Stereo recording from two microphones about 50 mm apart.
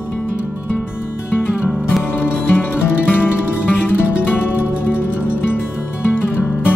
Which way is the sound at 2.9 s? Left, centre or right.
Left.